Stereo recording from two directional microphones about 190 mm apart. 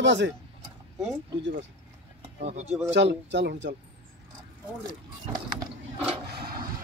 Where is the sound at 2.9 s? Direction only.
70° right (ahead or behind).